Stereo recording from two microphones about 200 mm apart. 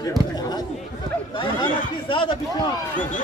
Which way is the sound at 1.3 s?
25° left (ahead or behind).